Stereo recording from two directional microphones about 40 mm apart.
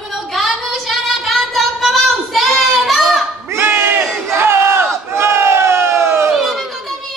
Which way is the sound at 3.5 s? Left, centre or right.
Right.